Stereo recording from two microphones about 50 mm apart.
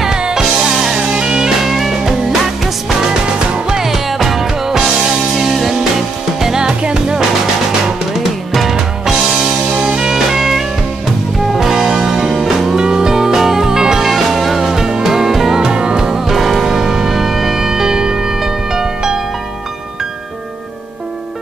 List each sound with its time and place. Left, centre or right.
0.0 s music: centre
1.6 s music: centre
3.5 s music: centre
8.2 s music: centre
8.7 s music: centre